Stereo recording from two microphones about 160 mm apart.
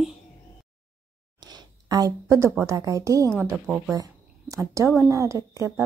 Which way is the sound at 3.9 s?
20° right (ahead or behind).